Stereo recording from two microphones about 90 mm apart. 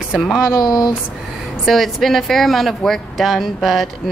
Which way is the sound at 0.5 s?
45° left (ahead or behind).